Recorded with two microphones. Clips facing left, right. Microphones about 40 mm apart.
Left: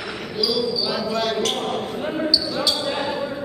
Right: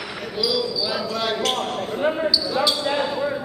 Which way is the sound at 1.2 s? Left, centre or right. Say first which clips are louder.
Even; centre.